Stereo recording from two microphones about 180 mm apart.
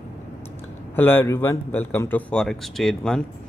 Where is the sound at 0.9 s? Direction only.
10° left (ahead or behind).